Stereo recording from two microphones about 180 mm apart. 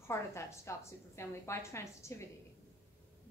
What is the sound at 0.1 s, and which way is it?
A woman's voice, 15° left (ahead or behind).